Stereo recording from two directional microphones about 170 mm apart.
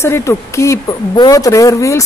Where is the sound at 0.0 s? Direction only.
15° left (ahead or behind).